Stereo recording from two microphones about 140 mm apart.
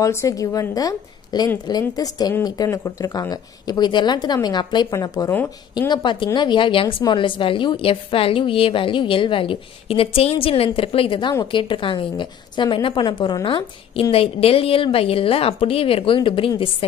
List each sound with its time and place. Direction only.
0.0 s a woman's voice: 20° left (ahead or behind); by 16.6 s 40° left (ahead or behind)